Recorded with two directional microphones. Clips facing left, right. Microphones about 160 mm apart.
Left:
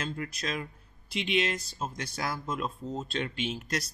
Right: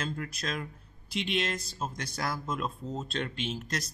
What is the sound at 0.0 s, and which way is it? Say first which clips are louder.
Speech: even; centre (ahead or behind).